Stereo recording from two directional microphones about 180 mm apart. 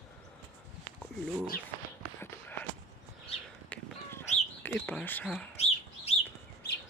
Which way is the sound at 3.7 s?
10° left (ahead or behind).